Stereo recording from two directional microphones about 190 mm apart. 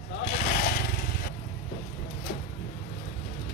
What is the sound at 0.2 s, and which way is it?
Vehicle, 45° left (ahead or behind).